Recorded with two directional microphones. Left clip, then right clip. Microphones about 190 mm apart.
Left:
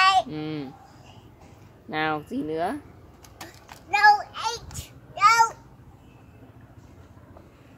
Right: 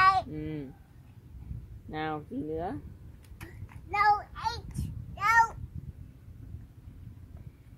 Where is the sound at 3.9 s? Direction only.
25° left (ahead or behind).